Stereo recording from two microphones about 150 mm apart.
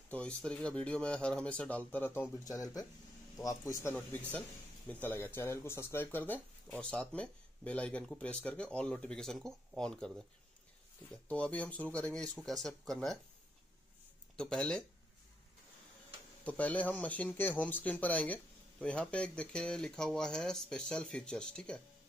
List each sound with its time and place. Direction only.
0.1 s speech: 10° left (ahead or behind)
2.3 s speech: 25° left (ahead or behind)
4.3 s speech: 10° left (ahead or behind)
11.2 s speech: 10° left (ahead or behind)
14.3 s speech: 5° left (ahead or behind)
16.4 s speech: 10° left (ahead or behind)